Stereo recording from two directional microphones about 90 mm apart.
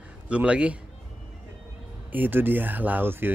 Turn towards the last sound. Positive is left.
turn(degrees=-25)  # may be behind; listen again after turning